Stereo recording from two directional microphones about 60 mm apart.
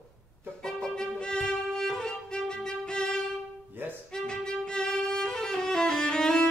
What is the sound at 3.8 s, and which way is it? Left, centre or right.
Music, right.